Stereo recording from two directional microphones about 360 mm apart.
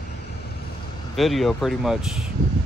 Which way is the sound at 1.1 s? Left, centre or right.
Centre.